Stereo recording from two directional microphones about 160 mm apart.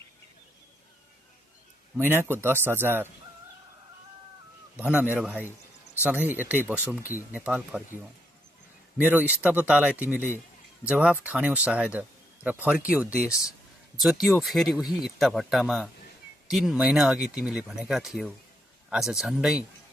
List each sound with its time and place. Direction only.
2.0 s speech: 15° right (ahead or behind)
4.7 s speech: 10° right (ahead or behind)
7.0 s speech: 15° left (ahead or behind)
7.3 s speech: 5° right (ahead or behind)
8.9 s speech: 10° right (ahead or behind)